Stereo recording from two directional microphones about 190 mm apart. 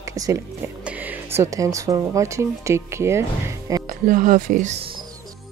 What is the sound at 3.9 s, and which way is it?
Speech, 45° right (ahead or behind).